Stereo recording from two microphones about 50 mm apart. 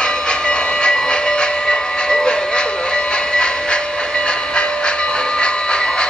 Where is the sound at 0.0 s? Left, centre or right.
Centre.